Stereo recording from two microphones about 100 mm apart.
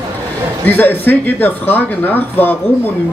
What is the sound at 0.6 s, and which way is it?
Speech, 20° left (ahead or behind).